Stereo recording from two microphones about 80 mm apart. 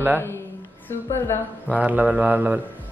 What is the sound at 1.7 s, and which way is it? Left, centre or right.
Speech, centre.